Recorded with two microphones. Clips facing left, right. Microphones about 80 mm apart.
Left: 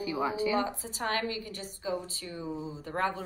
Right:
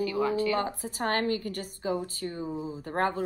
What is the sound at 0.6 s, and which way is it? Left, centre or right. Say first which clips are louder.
A woman's voice: right 2 dB; right.